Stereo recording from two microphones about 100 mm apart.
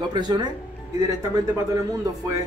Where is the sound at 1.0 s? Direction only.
35° right (ahead or behind).